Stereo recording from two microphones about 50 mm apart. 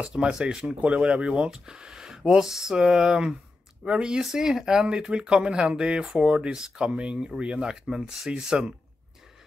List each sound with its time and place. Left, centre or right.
0.0 s speech: centre
0.7 s speech: right